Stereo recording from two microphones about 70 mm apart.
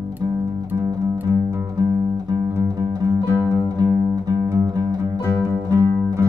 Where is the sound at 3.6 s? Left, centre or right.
Right.